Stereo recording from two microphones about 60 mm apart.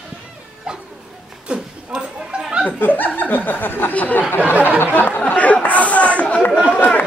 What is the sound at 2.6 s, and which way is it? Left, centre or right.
Speech, left.